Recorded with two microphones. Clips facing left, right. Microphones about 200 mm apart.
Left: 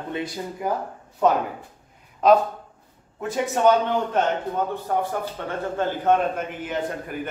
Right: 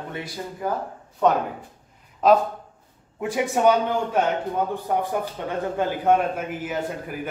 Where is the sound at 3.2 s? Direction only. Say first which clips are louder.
Right 1 dB; 10° right (ahead or behind).